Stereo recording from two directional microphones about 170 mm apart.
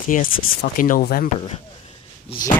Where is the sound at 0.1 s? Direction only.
55° left (ahead or behind).